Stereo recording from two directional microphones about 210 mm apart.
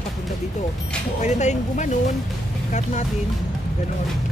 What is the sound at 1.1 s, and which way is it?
Speech, 35° left (ahead or behind).